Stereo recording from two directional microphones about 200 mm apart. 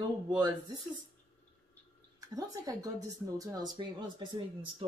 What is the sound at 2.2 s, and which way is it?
Speech, 15° right (ahead or behind).